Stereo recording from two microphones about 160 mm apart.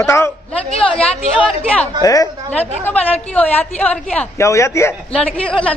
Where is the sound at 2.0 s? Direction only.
20° left (ahead or behind).